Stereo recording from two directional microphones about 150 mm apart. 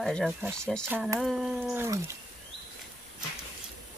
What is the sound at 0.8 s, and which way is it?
Speech, 15° right (ahead or behind).